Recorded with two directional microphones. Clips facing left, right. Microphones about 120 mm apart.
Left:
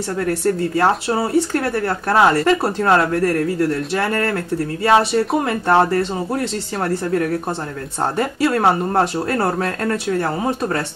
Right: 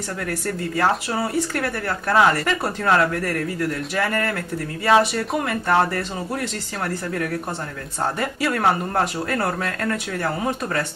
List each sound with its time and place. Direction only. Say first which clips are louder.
0.2 s speech: left 9 dB; 30° left (ahead or behind)